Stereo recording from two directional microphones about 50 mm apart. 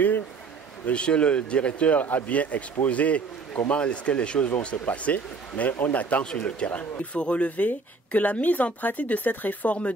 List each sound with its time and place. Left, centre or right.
0.8 s speech: left